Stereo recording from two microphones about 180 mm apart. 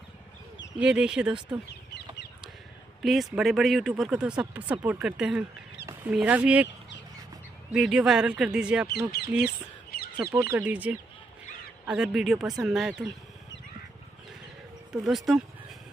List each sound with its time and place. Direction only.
0.7 s speech: 5° right (ahead or behind)
3.0 s speech: centre (ahead or behind)
7.7 s speech: 5° right (ahead or behind)
9.1 s speech: 60° left (ahead or behind)
10.1 s speech: 20° right (ahead or behind); by 13.1 s centre (ahead or behind)
14.9 s speech: centre (ahead or behind)